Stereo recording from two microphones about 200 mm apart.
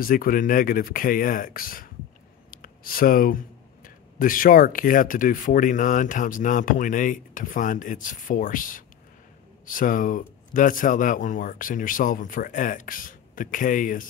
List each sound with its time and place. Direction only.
0.0 s speech: 45° left (ahead or behind)